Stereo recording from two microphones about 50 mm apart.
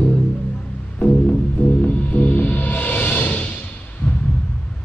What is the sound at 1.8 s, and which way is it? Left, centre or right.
Music, left.